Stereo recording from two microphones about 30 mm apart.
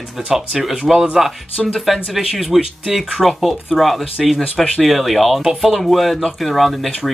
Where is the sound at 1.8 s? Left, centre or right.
Centre.